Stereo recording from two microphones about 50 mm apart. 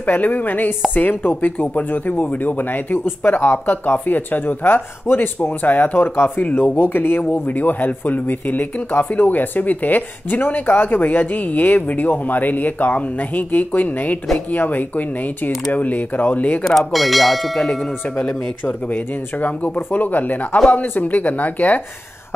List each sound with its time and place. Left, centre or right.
0.0 s a man's voice: left
16.6 s speech: centre
18.1 s a man's voice: left